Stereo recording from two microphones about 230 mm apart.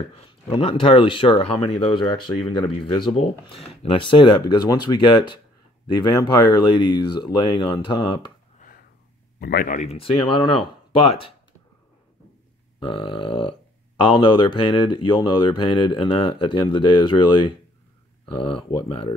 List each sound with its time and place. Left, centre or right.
0.1 s speech: left
9.4 s speech: left
12.8 s speech: left